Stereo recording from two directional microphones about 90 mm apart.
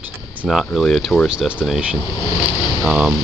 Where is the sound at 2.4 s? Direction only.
50° left (ahead or behind).